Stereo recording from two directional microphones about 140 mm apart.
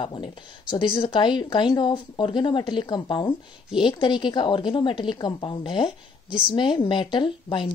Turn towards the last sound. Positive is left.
turn(degrees=35)  # may be behind; listen again after turning